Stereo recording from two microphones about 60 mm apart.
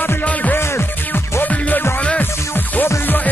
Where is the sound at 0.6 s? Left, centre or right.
Left.